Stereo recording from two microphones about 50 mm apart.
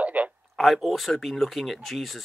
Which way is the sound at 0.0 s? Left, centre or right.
Right.